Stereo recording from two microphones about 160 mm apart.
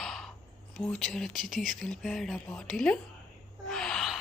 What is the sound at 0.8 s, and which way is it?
Speech, 5° left (ahead or behind).